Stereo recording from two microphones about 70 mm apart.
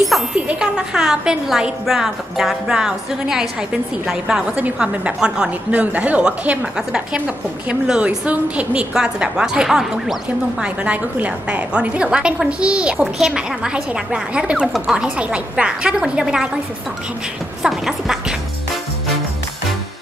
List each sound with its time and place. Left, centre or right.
0.3 s a woman's voice: centre
10.6 s a woman's voice: centre
15.1 s a woman's voice: centre
17.6 s speech: centre